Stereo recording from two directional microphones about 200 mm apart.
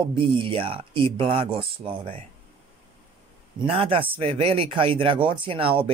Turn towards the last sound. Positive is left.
turn(degrees=-25)  # may be behind; listen again after turning